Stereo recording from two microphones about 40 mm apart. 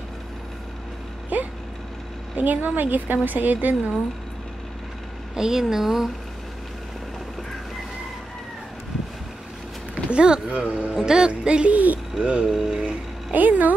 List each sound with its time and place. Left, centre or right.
1.3 s vehicle: right
2.3 s a woman's voice: right
5.3 s a woman's voice: centre
10.1 s speech: right
10.5 s speech: right
11.0 s speech: centre
11.7 s speech: right
12.2 s speech: right
12.4 s a woman's voice: centre
13.3 s a woman's voice: right